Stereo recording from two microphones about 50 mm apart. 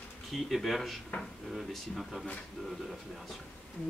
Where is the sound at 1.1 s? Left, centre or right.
Left.